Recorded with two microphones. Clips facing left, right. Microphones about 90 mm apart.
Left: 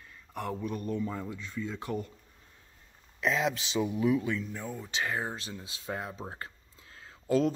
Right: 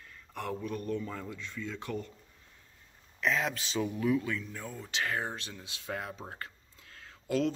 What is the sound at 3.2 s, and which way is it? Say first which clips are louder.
Speech: left 2 dB; 20° left (ahead or behind).